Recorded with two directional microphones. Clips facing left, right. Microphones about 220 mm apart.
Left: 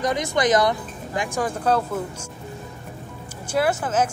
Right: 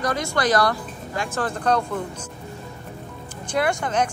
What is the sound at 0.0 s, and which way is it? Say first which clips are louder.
Speech: left 2 dB; 20° left (ahead or behind).